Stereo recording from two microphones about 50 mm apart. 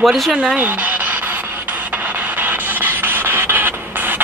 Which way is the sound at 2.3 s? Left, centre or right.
Right.